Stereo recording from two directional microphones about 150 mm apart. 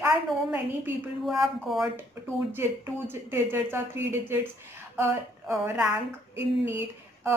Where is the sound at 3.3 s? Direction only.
15° right (ahead or behind).